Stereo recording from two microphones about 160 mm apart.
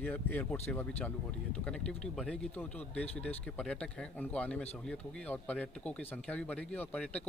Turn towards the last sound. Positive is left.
turn(degrees=10)  # may be behind; listen again after turning